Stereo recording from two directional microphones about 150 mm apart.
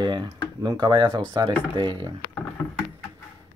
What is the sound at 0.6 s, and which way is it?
Speech, 30° right (ahead or behind).